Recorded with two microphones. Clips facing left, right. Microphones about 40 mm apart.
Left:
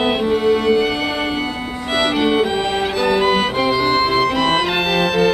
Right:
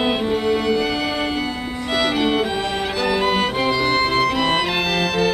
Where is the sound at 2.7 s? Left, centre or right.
Centre.